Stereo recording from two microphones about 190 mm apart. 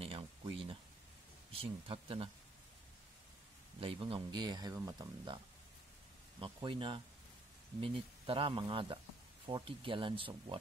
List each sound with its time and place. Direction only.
0.0 s a sound: 30° right (ahead or behind)
1.5 s speech: 30° right (ahead or behind)
3.8 s speech: 25° right (ahead or behind)
6.4 s speech: 25° right (ahead or behind)